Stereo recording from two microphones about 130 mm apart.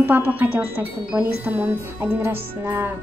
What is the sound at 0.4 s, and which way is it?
Speech, 15° right (ahead or behind).